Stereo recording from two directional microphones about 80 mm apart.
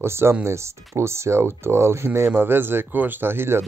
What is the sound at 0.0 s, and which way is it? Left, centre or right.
Speech, right.